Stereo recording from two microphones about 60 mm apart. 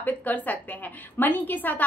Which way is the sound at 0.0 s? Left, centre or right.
Left.